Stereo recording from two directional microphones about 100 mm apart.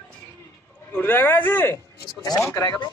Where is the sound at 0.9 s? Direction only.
20° left (ahead or behind).